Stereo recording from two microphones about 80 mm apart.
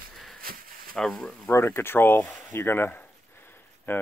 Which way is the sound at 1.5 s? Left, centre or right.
Left.